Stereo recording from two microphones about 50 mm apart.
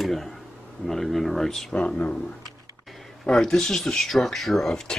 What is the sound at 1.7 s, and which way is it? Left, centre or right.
Speech, centre.